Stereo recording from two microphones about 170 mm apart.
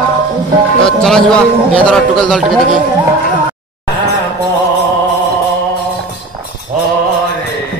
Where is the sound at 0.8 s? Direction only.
5° left (ahead or behind).